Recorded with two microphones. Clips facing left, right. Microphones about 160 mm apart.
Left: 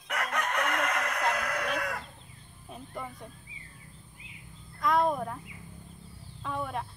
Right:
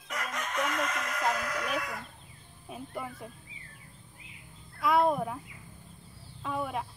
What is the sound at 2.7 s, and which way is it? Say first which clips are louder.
Speech: right 2 dB; 5° right (ahead or behind).